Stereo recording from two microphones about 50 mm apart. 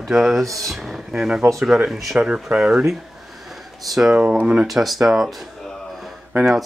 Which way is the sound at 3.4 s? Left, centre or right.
Centre.